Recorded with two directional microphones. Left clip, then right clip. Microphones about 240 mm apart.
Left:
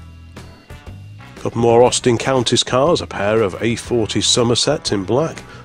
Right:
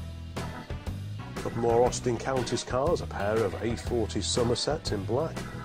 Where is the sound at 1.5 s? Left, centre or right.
Left.